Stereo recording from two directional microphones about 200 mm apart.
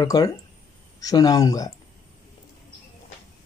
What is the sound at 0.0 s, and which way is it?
Speech, 20° left (ahead or behind).